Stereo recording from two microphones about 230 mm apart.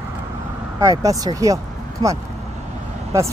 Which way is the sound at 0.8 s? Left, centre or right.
Centre.